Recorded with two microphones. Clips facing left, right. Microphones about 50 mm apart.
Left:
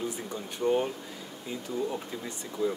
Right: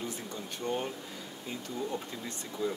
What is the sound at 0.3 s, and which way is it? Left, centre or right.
Speech, centre.